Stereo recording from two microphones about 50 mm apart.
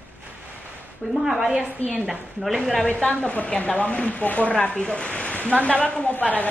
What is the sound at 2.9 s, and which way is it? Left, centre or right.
Speech, left.